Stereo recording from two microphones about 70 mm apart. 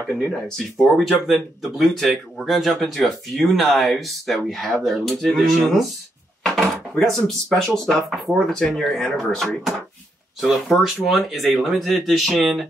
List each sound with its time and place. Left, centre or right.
0.0 s speech: centre
6.5 s drawer open or close: centre
7.2 s speech: centre